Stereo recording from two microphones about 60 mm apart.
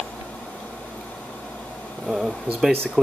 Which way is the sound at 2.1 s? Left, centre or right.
Centre.